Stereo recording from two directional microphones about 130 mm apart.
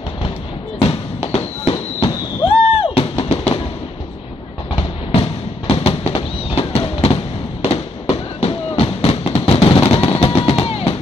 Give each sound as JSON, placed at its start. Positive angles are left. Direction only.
{"t": 0.7, "sound": "basketball bounce", "side_deg": 50}
{"t": 1.7, "sound": "fireworks", "side_deg": 45}
{"t": 4.7, "sound": "fireworks", "side_deg": 50}
{"t": 9.7, "sound": "music", "side_deg": 45}